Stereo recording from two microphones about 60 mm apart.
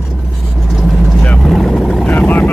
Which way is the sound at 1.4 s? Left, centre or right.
Centre.